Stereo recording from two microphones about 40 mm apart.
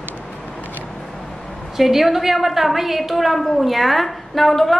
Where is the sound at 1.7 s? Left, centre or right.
Centre.